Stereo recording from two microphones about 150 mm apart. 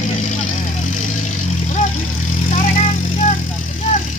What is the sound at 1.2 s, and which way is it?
Vehicle, 50° left (ahead or behind).